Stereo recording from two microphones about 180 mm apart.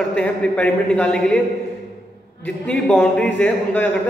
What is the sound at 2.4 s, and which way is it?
A man's voice, 5° left (ahead or behind).